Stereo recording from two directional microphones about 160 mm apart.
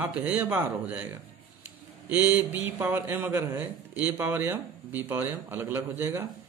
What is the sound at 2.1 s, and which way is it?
A man's voice, 10° right (ahead or behind).